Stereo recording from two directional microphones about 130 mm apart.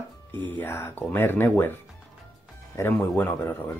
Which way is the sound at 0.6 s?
20° left (ahead or behind).